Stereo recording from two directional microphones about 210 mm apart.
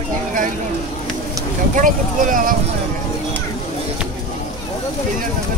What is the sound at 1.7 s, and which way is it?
Speech, 40° right (ahead or behind).